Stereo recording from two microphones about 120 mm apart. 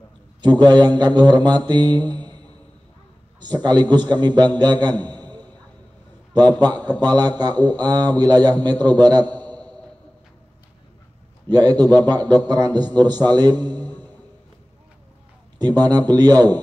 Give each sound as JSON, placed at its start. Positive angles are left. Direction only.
{"t": 0.4, "sound": "a man's voice", "side_deg": -35}
{"t": 1.7, "sound": "mantra", "side_deg": -40}
{"t": 3.3, "sound": "a man's voice", "side_deg": -35}
{"t": 5.0, "sound": "a sound", "side_deg": -35}
{"t": 7.0, "sound": "a man's voice", "side_deg": -35}
{"t": 9.4, "sound": "a sound", "side_deg": 10}
{"t": 11.4, "sound": "a man's voice", "side_deg": -35}
{"t": 15.6, "sound": "a man's voice", "side_deg": -35}